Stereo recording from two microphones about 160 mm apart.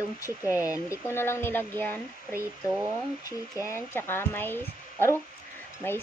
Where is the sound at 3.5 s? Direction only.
15° left (ahead or behind).